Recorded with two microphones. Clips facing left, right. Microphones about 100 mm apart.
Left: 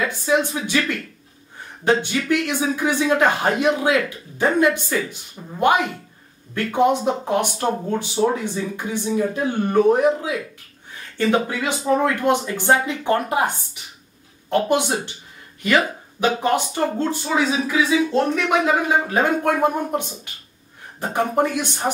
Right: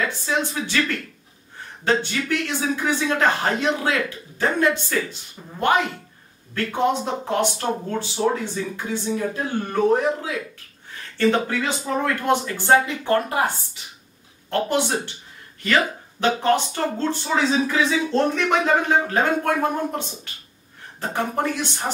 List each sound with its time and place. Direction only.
0.0 s speech: 15° left (ahead or behind)
14.5 s speech: 15° left (ahead or behind)
16.2 s speech: 15° left (ahead or behind)